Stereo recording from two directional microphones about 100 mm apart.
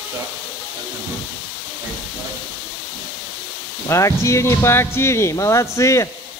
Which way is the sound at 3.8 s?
30° left (ahead or behind).